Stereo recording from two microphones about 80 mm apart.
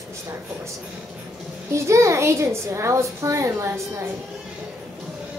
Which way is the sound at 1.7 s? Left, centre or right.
Right.